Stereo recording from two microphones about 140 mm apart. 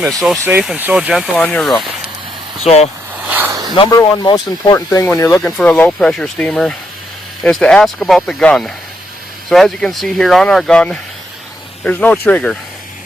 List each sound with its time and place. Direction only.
0.0 s speech: centre (ahead or behind)
0.5 s speech: 10° right (ahead or behind)
2.6 s speech: 50° left (ahead or behind)
3.3 s a sound: 15° right (ahead or behind)
3.9 s speech: 30° left (ahead or behind)
5.6 s speech: 10° left (ahead or behind)